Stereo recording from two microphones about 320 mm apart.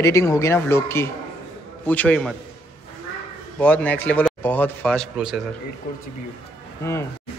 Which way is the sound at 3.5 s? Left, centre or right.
Centre.